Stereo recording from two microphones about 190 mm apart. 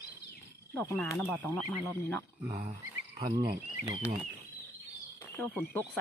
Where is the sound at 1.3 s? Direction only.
10° left (ahead or behind).